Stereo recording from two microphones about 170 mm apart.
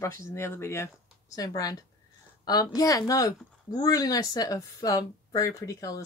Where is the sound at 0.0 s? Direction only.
15° left (ahead or behind).